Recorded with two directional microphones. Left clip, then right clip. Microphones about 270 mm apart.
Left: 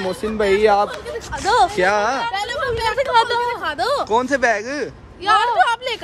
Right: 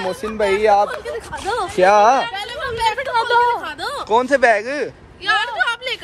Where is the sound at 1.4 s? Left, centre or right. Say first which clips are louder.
Left 7 dB; left.